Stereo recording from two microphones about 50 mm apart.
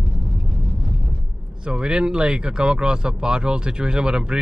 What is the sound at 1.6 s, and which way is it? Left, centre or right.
Speech, centre.